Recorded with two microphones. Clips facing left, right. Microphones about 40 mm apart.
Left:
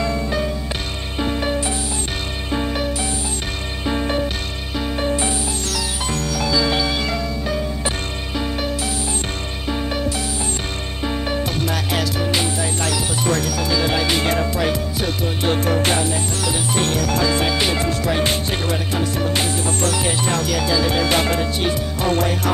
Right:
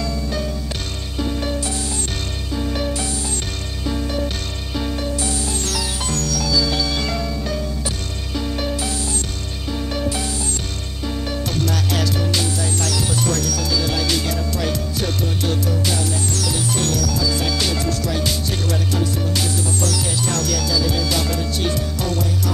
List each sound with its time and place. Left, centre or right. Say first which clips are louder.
0.0 s music: left 3 dB; left
3.8 s music: left 3 dB; left; by 8.9 s centre
9.7 s music: left 2 dB; left
11.1 s music: left 2 dB; left
14.5 s music: left 3 dB; centre
15.4 s music: left 6 dB; left
16.0 s music: left 2 dB; left
17.4 s music: left 3 dB; left
20.3 s music: left 2 dB; centre
20.6 s music: left 3 dB; left